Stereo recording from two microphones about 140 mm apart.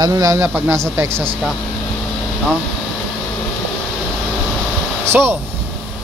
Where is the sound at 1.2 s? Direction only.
5° left (ahead or behind).